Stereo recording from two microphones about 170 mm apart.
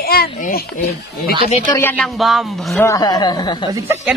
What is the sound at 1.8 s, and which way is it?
Music, 10° left (ahead or behind).